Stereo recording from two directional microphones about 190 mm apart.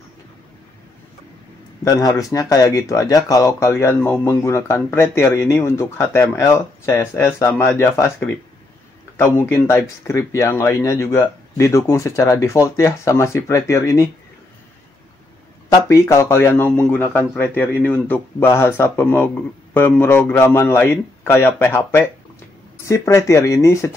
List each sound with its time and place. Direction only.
1.9 s speech: 20° left (ahead or behind)
9.1 s speech: 15° left (ahead or behind)
15.7 s speech: 15° left (ahead or behind)